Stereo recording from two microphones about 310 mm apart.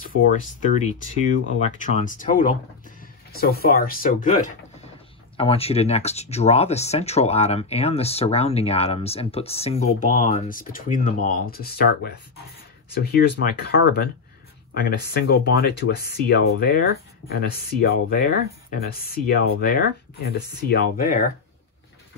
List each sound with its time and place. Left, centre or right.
0.2 s speech: left
5.4 s speech: centre